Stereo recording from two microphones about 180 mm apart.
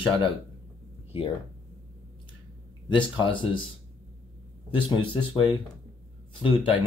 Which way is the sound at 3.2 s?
30° left (ahead or behind).